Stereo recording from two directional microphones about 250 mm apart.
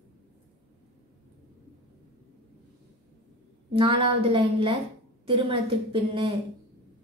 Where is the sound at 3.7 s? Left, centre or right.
Right.